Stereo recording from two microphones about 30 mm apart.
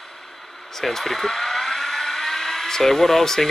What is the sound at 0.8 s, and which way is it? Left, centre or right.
Speech, centre.